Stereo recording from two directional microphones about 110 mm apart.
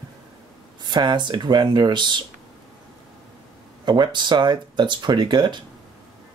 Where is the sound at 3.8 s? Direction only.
45° right (ahead or behind).